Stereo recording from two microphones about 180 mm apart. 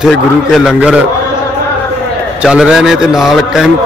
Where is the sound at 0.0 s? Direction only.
Centre (ahead or behind).